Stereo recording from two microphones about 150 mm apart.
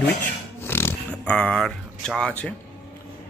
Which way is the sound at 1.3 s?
5° left (ahead or behind).